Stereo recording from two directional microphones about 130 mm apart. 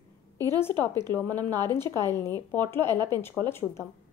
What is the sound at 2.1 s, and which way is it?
A woman's voice, 15° left (ahead or behind).